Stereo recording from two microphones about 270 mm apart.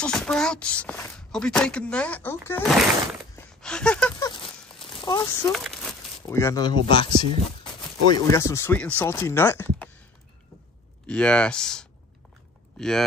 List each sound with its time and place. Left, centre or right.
0.0 s speech: centre
3.6 s a sound: centre
4.3 s a sound: centre
5.0 s speech: centre
5.5 s crumpling: centre
6.3 s speech: centre
8.1 s speech: centre
11.1 s speech: centre